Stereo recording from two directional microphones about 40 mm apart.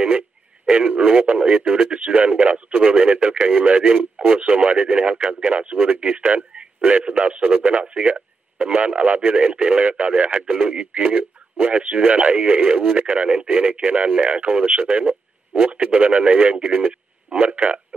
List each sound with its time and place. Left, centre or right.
0.7 s speech: right
6.5 s radio: right
7.1 s speech: right
10.3 s speech: right
10.7 s speech: right
11.0 s speech: right